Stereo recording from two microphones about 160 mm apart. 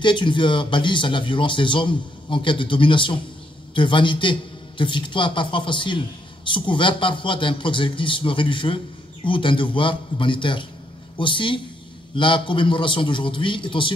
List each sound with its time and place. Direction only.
0.0 s a man's voice: 30° left (ahead or behind)